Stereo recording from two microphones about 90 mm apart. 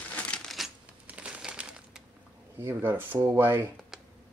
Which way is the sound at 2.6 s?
25° right (ahead or behind).